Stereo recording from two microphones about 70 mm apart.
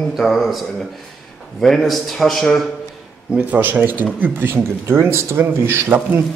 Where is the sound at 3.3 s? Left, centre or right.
Right.